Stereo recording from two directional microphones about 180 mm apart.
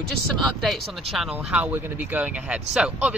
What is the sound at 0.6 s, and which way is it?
Speech, centre (ahead or behind).